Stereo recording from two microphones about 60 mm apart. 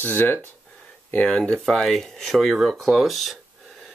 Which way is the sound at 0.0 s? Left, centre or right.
Left.